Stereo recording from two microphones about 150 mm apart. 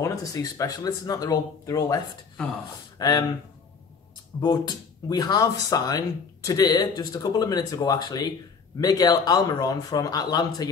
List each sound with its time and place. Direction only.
0.0 s speech: 20° left (ahead or behind)
3.0 s speech: 25° left (ahead or behind)
4.4 s speech: 30° left (ahead or behind)